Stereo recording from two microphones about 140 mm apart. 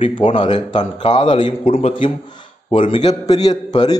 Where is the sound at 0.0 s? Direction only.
40° left (ahead or behind).